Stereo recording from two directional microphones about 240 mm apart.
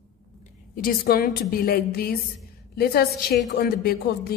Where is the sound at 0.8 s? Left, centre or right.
Left.